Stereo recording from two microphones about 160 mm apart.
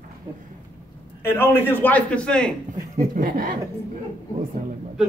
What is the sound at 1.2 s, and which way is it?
A man's voice, 15° left (ahead or behind).